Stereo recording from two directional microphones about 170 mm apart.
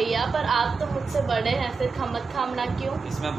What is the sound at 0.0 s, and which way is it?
A woman's voice, centre (ahead or behind).